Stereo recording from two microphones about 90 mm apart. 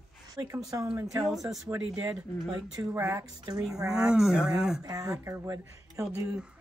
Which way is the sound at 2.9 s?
25° right (ahead or behind).